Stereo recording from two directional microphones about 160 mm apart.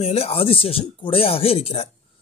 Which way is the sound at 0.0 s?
40° left (ahead or behind).